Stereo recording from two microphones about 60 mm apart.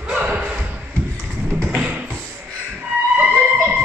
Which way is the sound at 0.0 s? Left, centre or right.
Centre.